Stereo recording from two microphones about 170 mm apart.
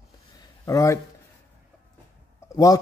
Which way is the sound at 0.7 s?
20° left (ahead or behind).